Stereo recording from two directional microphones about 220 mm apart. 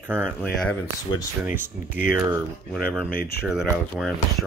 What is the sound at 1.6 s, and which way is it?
Speech, 40° left (ahead or behind).